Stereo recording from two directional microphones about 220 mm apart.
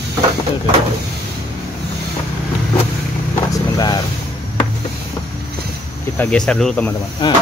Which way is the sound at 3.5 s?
15° left (ahead or behind).